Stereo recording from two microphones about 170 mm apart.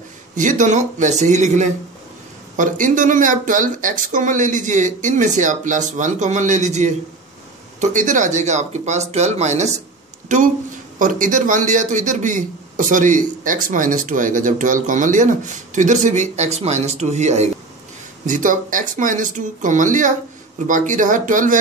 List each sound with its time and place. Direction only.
0.3 s a man's voice: 45° right (ahead or behind)